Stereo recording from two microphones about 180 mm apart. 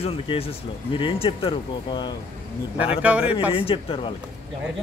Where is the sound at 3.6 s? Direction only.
30° left (ahead or behind).